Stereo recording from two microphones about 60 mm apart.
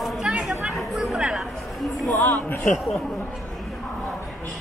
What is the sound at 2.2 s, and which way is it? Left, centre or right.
Speech, left.